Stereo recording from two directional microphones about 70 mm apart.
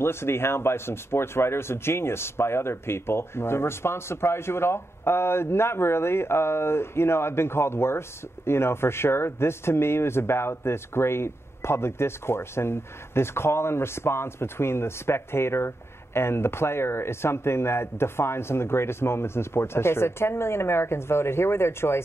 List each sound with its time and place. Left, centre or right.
0.0 s speech: left